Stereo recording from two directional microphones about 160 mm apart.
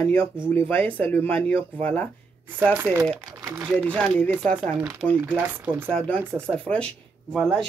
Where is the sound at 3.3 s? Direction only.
15° right (ahead or behind).